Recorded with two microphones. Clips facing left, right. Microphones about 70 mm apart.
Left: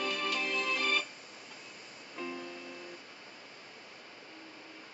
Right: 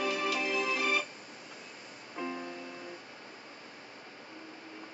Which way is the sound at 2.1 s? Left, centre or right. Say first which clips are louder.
Right 3 dB; right.